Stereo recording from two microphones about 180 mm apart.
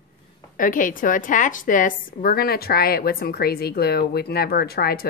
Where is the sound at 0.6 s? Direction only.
45° left (ahead or behind).